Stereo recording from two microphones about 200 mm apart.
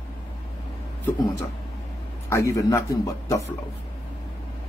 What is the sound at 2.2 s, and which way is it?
Speech, 15° left (ahead or behind).